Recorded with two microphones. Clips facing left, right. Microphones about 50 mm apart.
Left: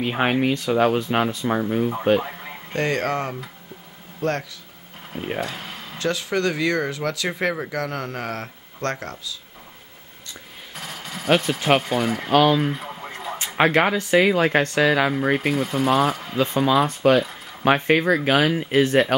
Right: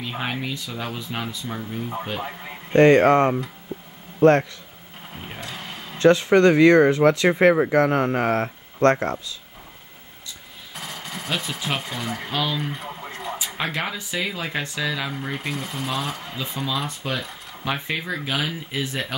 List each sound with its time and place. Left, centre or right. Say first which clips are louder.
0.0 s speech: left 8 dB; left
2.2 s radio: even; centre
2.7 s a man's voice: right 9 dB; right
5.4 s a sound: left 5 dB; centre
5.9 s speech: right 8 dB; right
10.8 s a sound: even; centre
11.3 s speech: left 8 dB; centre
12.3 s speech: left 11 dB; left
12.5 s radio: left 5 dB; centre
13.6 s speech: left 11 dB; left
15.3 s speech: left 8 dB; centre
17.0 s speech: left 14 dB; left
17.6 s speech: left 9 dB; left